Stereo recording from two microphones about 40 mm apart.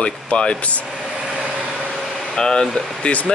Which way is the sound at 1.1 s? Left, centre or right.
Centre.